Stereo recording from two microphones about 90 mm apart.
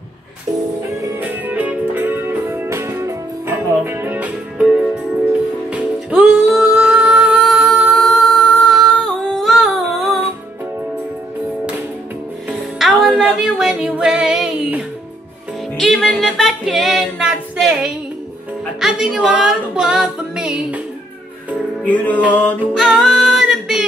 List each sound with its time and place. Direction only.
1.2 s music: 20° right (ahead or behind); by 10.2 s centre (ahead or behind)
12.4 s music: centre (ahead or behind)
13.1 s a sound: 10° right (ahead or behind)
13.6 s music: 10° right (ahead or behind)
15.8 s music: 5° left (ahead or behind)
21.8 s music: 20° left (ahead or behind)
22.8 s music: centre (ahead or behind)